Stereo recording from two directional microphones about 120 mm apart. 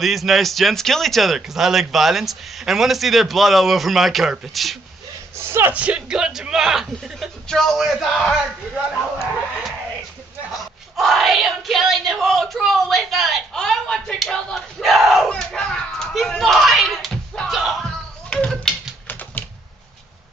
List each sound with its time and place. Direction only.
0.0 s speech: centre (ahead or behind)
5.4 s speech: 20° right (ahead or behind); by 9.8 s centre (ahead or behind)
10.5 s a sound: centre (ahead or behind)
19.0 s typing: 15° left (ahead or behind)